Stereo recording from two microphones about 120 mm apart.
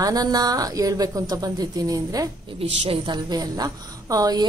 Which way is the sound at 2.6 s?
55° right (ahead or behind).